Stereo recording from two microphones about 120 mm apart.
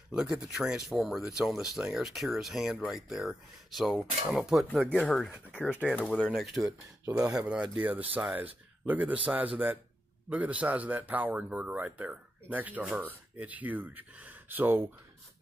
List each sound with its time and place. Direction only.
0.1 s speech: 5° right (ahead or behind)
6.6 s speech: 30° right (ahead or behind)
7.3 s a man's voice: 10° right (ahead or behind)